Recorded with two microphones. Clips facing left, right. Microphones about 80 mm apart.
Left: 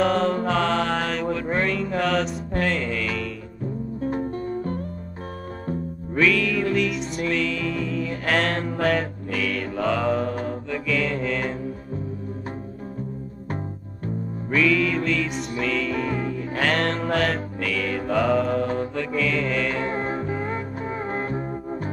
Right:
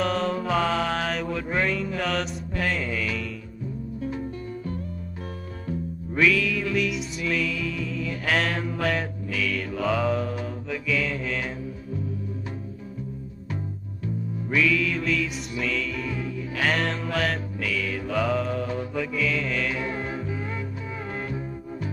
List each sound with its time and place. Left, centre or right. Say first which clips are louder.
0.0 s mantra: left 4 dB; centre
2.0 s music: left 5 dB; centre
4.0 s music: left 6 dB; left
6.1 s music: left 2 dB; centre
7.0 s music: left 3 dB; left
7.3 s music: left 2 dB; centre
9.4 s mantra: left 2 dB; centre
14.5 s music: left 3 dB; centre
15.9 s music: left 5 dB; left
16.6 s music: left 3 dB; centre
19.7 s music: left 4 dB; left